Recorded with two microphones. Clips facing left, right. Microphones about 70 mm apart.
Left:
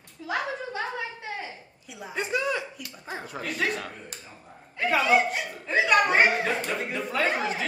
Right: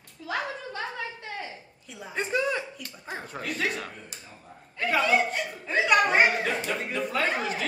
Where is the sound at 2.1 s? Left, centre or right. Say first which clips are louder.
Even; right.